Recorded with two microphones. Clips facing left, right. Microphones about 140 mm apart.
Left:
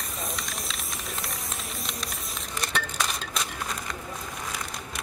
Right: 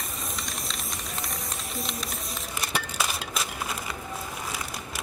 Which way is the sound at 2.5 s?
5° right (ahead or behind).